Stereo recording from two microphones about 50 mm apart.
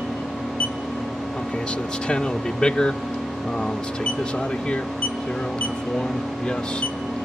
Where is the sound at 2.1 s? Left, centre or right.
Centre.